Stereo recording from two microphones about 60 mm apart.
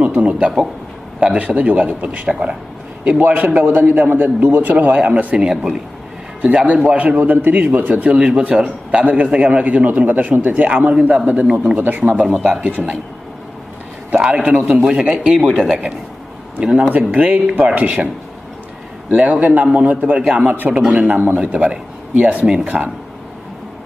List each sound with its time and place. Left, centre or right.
0.2 s a man's voice: right
5.4 s speech: centre
6.4 s a man's voice: right
12.4 s speech: centre
12.6 s a man's voice: right
14.1 s a man's voice: centre
16.6 s a man's voice: centre